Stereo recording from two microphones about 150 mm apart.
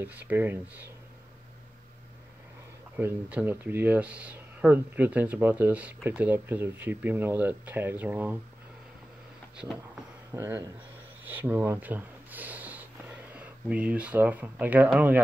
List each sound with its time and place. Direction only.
0.3 s speech: 15° right (ahead or behind)
3.0 s speech: 10° right (ahead or behind)
10.3 s speech: 20° right (ahead or behind)